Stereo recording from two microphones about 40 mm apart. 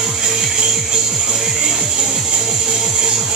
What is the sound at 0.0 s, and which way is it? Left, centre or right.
Music, centre.